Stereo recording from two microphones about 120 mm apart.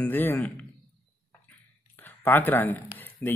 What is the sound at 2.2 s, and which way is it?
Speech, 15° left (ahead or behind).